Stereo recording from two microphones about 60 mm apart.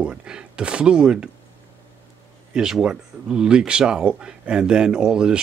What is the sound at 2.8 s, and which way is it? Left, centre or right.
Speech, centre.